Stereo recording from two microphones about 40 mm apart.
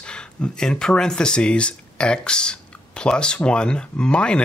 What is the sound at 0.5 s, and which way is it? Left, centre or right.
Speech, centre.